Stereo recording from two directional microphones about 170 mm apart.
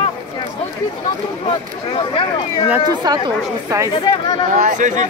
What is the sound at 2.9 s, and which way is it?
Speech, 25° right (ahead or behind).